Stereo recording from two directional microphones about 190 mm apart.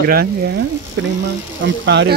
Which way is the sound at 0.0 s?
55° right (ahead or behind).